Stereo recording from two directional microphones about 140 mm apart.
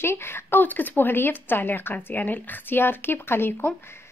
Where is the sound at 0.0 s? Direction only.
15° left (ahead or behind).